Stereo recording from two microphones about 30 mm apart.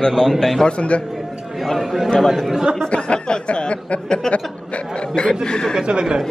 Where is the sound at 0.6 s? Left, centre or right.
Left.